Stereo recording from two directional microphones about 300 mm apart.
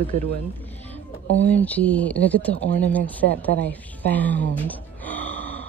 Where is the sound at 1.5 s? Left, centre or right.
Centre.